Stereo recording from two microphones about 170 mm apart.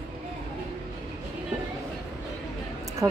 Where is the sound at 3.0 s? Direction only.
20° right (ahead or behind).